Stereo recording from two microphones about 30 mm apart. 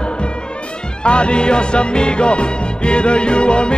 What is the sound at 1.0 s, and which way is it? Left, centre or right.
Music, left.